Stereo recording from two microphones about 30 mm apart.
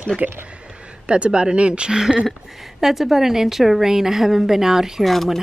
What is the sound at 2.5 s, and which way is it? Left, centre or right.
A woman's voice, centre.